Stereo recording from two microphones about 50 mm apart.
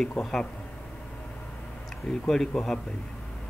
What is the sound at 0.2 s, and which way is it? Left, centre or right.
Speech, centre.